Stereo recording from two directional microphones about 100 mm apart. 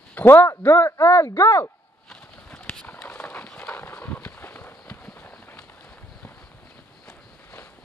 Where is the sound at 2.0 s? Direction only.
10° left (ahead or behind).